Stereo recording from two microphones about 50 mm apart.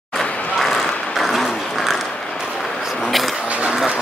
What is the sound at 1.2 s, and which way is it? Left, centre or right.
Applause, centre.